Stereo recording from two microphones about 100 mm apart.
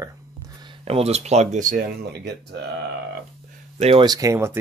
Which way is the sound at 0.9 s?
90° right.